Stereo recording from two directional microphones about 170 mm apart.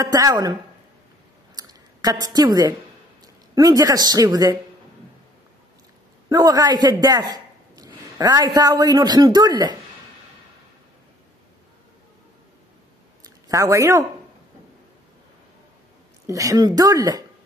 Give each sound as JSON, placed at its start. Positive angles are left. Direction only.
{"t": 0.0, "sound": "a man's voice", "side_deg": -20}
{"t": 1.5, "sound": "clicking", "side_deg": -20}
{"t": 3.5, "sound": "a man's voice", "side_deg": -20}
{"t": 6.2, "sound": "a man's voice", "side_deg": -25}
{"t": 13.2, "sound": "a sound", "side_deg": -20}
{"t": 16.3, "sound": "a man's voice", "side_deg": -20}